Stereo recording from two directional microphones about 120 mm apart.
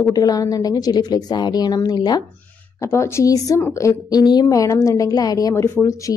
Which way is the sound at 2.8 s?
25° left (ahead or behind).